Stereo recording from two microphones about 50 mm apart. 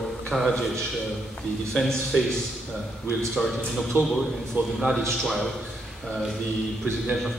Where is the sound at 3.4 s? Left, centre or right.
Centre.